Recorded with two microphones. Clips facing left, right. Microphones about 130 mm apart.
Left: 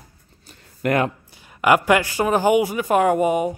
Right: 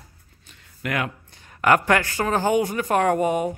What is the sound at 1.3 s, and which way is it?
Speech, 10° left (ahead or behind).